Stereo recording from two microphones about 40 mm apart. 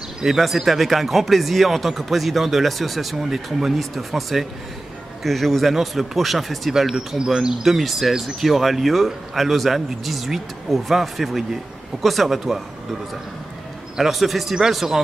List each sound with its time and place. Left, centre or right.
0.4 s speech: centre
7.3 s speech: centre
7.6 s speech: centre
13.9 s speech: centre